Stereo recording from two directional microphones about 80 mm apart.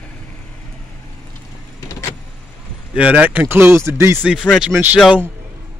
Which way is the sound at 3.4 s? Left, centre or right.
Right.